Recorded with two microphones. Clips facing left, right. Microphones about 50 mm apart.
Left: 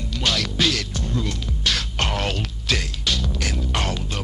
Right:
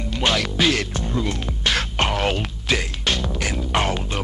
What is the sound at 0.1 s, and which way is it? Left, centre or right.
Music, right.